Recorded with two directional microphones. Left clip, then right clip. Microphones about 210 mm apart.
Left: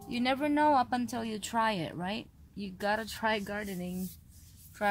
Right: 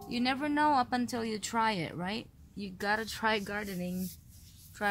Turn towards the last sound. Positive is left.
turn(degrees=10)  # may be behind; listen again after turning